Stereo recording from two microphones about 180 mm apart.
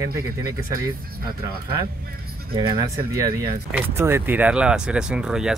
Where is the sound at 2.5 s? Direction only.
20° right (ahead or behind).